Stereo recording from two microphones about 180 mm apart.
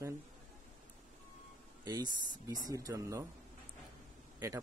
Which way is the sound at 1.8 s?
25° right (ahead or behind).